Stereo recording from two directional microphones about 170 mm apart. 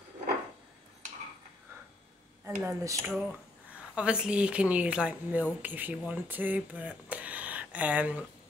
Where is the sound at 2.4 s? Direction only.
15° right (ahead or behind).